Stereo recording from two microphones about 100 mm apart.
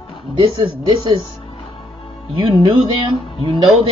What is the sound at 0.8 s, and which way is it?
Speech, 55° right (ahead or behind).